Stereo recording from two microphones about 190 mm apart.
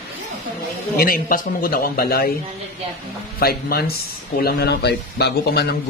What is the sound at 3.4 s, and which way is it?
A man's voice, 55° left (ahead or behind).